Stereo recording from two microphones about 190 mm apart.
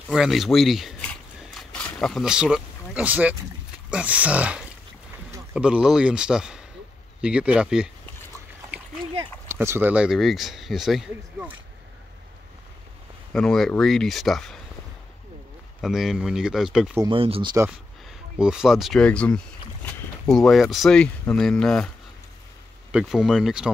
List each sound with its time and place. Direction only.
0.1 s speech: centre (ahead or behind)
9.5 s speech: 10° right (ahead or behind)
13.3 s speech: 5° left (ahead or behind)
15.8 s speech: centre (ahead or behind)
17.0 s speech: 30° right (ahead or behind)
18.4 s speech: 5° right (ahead or behind)